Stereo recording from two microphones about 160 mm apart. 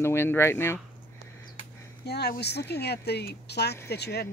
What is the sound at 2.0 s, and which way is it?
Speech, 90° left.